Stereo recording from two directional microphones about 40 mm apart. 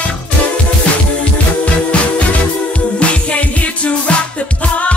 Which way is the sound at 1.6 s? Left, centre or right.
Left.